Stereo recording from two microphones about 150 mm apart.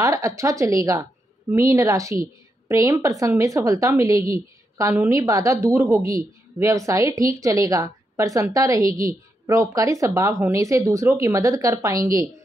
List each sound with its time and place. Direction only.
0.0 s a woman's voice: 20° right (ahead or behind)